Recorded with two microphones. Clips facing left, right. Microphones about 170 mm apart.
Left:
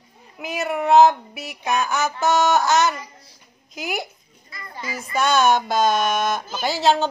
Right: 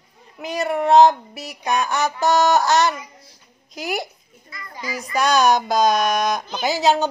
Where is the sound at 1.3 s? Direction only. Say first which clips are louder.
Even; 40° right (ahead or behind).